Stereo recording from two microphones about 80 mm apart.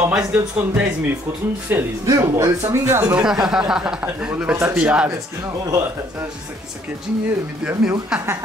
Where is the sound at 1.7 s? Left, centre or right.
Right.